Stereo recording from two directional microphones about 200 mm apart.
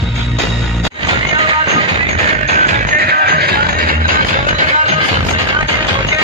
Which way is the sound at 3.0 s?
50° right (ahead or behind).